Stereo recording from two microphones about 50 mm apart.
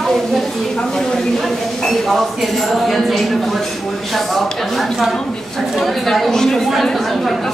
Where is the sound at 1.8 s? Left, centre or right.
Centre.